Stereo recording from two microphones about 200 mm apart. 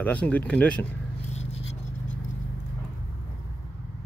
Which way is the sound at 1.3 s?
35° left (ahead or behind).